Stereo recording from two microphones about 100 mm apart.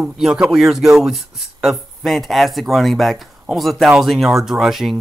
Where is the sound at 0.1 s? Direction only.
5° right (ahead or behind).